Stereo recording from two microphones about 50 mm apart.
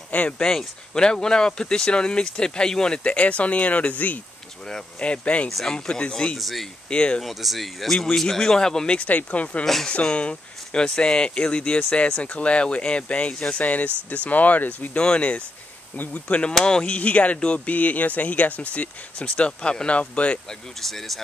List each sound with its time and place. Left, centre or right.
0.4 s speech: centre
3.0 s speech: left
4.6 s speech: centre
6.3 s speech: centre
6.9 s speech: left
7.2 s speech: centre
8.9 s speech: left
15.0 s speech: left
20.4 s speech: centre